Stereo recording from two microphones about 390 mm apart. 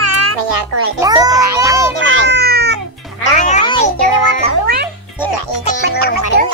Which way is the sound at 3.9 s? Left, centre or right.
Centre.